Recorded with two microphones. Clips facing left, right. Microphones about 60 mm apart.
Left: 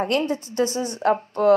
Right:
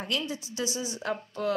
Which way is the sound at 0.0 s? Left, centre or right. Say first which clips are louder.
Left 10 dB; left.